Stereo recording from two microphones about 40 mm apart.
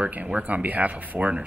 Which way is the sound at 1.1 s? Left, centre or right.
Right.